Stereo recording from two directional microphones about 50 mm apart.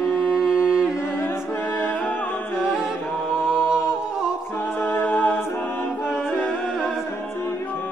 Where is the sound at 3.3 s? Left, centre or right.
Centre.